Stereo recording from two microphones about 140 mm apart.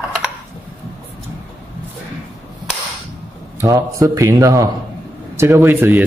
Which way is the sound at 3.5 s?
25° right (ahead or behind).